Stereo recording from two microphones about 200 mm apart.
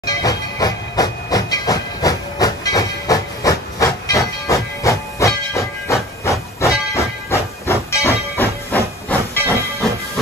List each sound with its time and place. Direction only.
0.0 s train: 20° left (ahead or behind)
6.6 s hiss: 15° left (ahead or behind)